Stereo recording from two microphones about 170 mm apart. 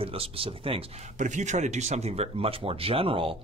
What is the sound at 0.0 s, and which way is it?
Speech, 35° right (ahead or behind).